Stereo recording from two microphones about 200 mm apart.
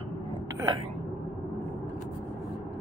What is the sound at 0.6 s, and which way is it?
Speech, 20° right (ahead or behind).